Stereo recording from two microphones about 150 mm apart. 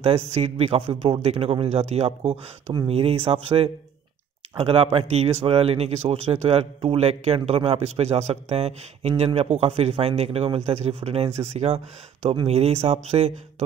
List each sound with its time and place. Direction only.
0.0 s a man's voice: 45° right (ahead or behind)